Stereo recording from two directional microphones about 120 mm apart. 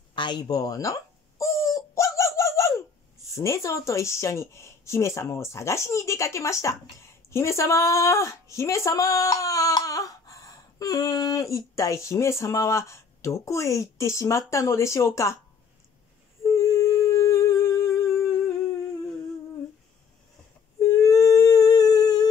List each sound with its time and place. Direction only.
0.1 s a sound: 40° left (ahead or behind)
3.3 s speech: 25° left (ahead or behind)
16.4 s humming: 25° left (ahead or behind)
21.0 s humming: 30° left (ahead or behind)